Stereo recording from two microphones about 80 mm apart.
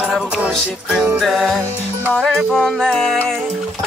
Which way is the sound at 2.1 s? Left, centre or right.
Centre.